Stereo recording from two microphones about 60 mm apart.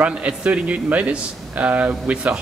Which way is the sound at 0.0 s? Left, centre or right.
Right.